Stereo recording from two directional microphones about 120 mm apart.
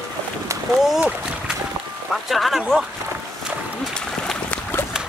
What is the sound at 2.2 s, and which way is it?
Speech, centre (ahead or behind).